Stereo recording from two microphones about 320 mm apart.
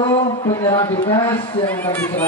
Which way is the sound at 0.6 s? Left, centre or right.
Centre.